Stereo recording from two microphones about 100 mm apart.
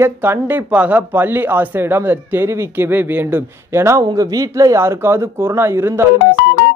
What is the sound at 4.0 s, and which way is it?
Speech, 40° right (ahead or behind).